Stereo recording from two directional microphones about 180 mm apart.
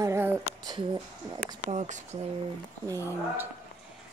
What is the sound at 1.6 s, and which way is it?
Speech, 40° right (ahead or behind).